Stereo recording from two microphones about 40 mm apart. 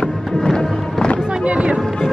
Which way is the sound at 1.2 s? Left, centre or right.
Right.